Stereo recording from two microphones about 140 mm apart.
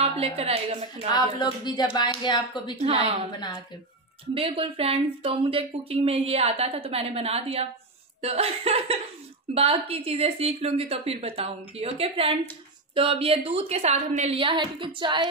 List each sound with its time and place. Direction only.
0.0 s speech: 45° right (ahead or behind)
0.9 s speech: 30° left (ahead or behind)
2.8 s speech: 45° right (ahead or behind)
4.3 s speech: 40° right (ahead or behind)
14.4 s female singing: 35° right (ahead or behind)